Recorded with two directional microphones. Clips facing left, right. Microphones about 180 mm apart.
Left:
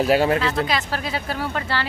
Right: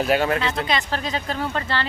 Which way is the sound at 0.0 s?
35° left (ahead or behind).